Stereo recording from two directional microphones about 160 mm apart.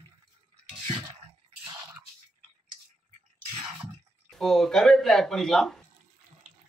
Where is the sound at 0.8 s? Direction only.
30° right (ahead or behind).